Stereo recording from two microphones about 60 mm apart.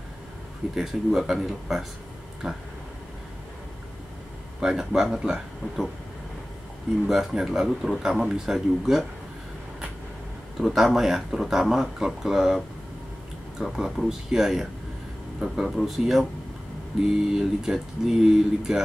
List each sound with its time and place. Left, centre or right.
0.7 s speech: centre
4.6 s speech: centre
7.1 s speech: centre
10.6 s speech: centre
17.3 s speech: centre